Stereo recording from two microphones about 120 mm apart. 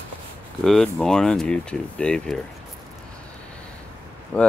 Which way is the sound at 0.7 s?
5° left (ahead or behind).